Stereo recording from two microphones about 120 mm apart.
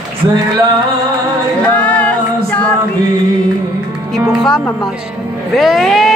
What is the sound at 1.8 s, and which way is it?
A capella, 10° left (ahead or behind).